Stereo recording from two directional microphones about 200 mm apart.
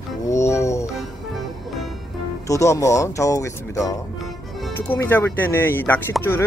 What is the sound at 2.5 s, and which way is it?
Speech, 15° left (ahead or behind).